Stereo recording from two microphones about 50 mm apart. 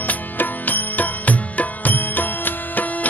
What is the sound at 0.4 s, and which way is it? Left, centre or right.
Music, left.